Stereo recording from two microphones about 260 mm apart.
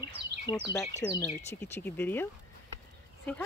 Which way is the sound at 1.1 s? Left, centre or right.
Centre.